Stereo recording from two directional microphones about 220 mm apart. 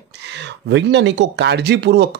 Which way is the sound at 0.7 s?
50° right (ahead or behind).